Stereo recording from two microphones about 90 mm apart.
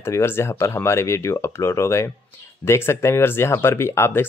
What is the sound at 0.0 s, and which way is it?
Speech, 30° left (ahead or behind).